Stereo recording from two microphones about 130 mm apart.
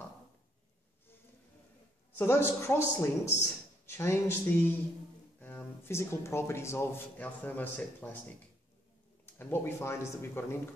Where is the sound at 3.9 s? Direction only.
20° left (ahead or behind).